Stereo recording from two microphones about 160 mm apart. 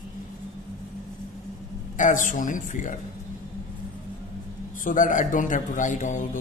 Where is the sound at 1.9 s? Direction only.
55° left (ahead or behind).